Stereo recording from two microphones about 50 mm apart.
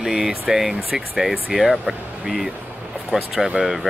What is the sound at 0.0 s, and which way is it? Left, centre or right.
Speech, centre.